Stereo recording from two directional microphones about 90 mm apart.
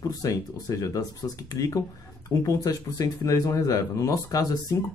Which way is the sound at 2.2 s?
40° left (ahead or behind).